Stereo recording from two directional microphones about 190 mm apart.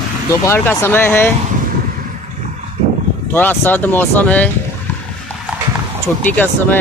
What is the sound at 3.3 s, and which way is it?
Speech, 10° left (ahead or behind).